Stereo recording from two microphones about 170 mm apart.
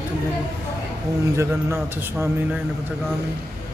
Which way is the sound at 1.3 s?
15° right (ahead or behind).